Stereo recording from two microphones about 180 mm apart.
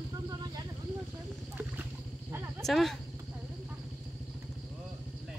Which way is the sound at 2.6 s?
Centre (ahead or behind).